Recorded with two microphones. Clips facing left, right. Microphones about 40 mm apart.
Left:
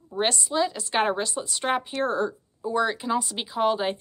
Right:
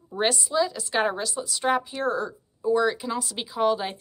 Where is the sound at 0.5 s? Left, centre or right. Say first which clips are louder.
Left 2 dB; left.